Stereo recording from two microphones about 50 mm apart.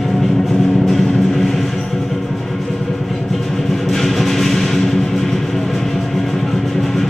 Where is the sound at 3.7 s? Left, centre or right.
Centre.